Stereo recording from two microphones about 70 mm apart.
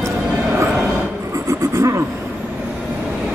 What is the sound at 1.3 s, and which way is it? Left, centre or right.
Vehicle, right.